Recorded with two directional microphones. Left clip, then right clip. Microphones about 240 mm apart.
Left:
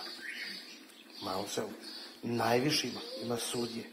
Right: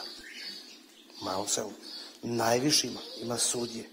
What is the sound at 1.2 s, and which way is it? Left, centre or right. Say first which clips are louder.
Speech: right 4 dB; right.